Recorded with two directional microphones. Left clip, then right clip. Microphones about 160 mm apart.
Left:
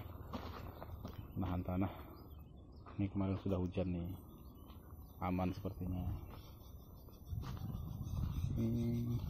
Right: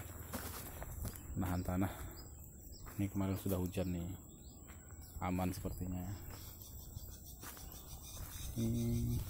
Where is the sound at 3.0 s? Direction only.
10° right (ahead or behind).